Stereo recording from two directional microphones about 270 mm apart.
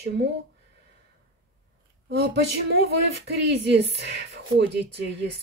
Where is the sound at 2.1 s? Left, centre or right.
Right.